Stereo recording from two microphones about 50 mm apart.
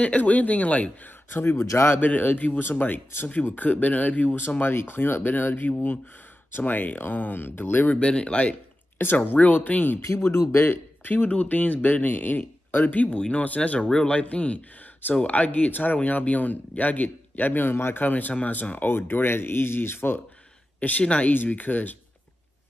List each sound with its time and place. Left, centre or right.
0.0 s speech: left
1.6 s speech: left
2.0 s speech: left
4.6 s speech: left
7.9 s speech: left
8.9 s speech: left
10.0 s speech: left
13.7 s speech: centre; by 18.0 s left
18.0 s speech: left
21.0 s speech: left
21.5 s speech: left